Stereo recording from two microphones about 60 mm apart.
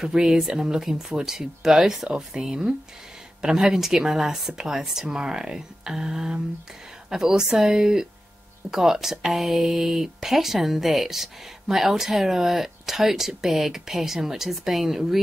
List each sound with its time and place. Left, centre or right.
0.0 s speech: centre